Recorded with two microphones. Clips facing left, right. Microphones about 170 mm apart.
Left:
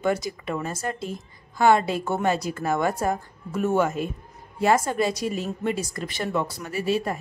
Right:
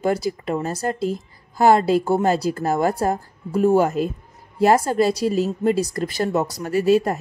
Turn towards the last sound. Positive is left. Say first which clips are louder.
# right 8 dB
turn(degrees=-40)  # may be behind; listen again after turning